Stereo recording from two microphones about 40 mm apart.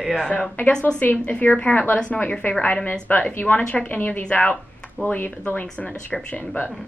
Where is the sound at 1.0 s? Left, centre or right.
Left.